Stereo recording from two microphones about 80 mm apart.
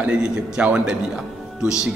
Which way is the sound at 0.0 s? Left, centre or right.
Centre.